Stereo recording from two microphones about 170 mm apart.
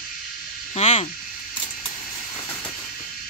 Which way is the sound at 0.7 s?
40° left (ahead or behind).